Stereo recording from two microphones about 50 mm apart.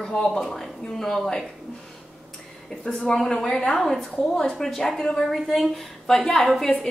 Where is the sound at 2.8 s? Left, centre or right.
Centre.